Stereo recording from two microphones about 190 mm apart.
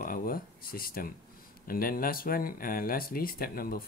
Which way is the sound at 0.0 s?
50° left (ahead or behind).